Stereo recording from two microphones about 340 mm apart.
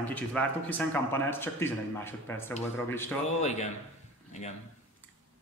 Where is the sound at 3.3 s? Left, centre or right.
Centre.